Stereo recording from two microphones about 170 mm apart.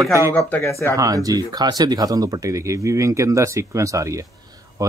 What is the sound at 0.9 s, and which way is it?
Speech, 20° right (ahead or behind).